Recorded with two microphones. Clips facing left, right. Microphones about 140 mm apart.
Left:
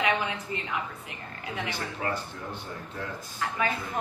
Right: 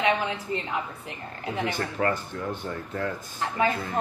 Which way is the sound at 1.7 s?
60° right (ahead or behind).